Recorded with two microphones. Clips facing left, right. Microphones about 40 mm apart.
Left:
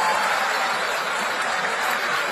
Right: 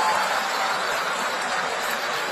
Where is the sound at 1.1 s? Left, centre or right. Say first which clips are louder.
Left 2 dB; left.